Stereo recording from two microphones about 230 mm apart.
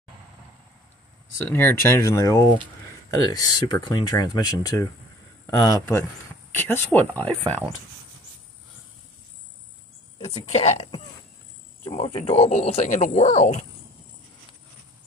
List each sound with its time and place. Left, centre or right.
1.4 s speech: centre
10.2 s speech: left